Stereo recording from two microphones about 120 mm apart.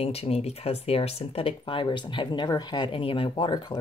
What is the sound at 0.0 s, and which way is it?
Speech, 60° left (ahead or behind).